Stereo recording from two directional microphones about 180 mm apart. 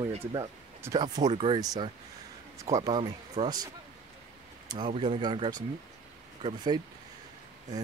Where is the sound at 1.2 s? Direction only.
35° right (ahead or behind).